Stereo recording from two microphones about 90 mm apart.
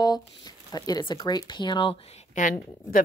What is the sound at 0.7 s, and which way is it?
Speech, 45° left (ahead or behind).